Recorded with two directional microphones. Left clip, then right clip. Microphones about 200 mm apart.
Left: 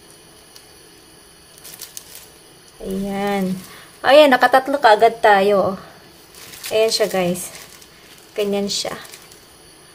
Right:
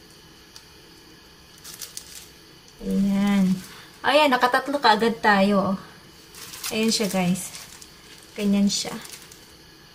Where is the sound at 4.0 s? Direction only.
50° left (ahead or behind).